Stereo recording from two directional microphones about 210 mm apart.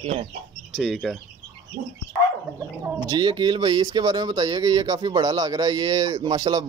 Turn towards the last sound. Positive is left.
turn(degrees=-20)  # may be behind; listen again after turning